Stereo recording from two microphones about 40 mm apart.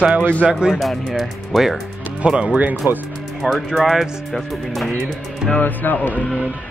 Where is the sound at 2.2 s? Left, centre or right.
Right.